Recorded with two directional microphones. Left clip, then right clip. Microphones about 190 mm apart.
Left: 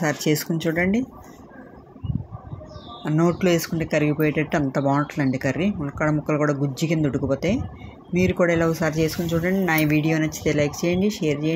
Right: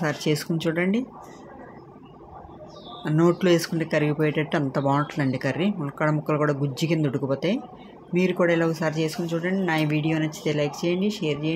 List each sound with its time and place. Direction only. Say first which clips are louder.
0.0 s speech: left 3 dB; centre (ahead or behind)
3.0 s speech: even; centre (ahead or behind)